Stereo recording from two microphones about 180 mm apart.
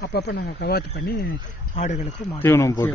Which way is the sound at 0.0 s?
65° left (ahead or behind).